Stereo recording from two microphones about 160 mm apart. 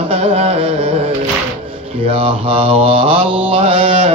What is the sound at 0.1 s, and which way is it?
Carnatic music, 35° right (ahead or behind).